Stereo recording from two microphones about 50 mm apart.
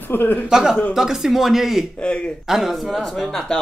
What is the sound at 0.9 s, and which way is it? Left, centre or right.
Speech, centre.